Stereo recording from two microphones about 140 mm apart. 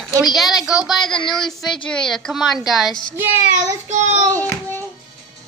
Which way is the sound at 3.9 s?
55° right (ahead or behind).